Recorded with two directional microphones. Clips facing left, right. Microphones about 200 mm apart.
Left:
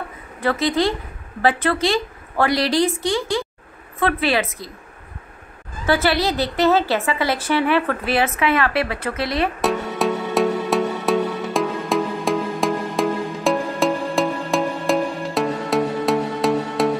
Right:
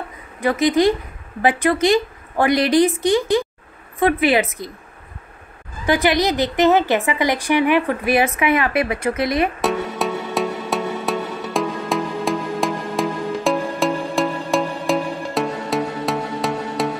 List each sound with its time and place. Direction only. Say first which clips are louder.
0.4 s a woman's voice: right 3 dB; 15° right (ahead or behind)
5.9 s a woman's voice: right 2 dB; 15° right (ahead or behind)
9.6 s music: even; centre (ahead or behind)